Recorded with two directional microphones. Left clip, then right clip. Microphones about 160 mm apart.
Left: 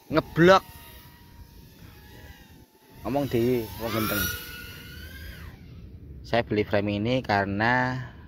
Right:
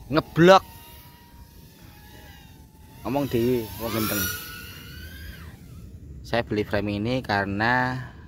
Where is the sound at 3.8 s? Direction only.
25° right (ahead or behind).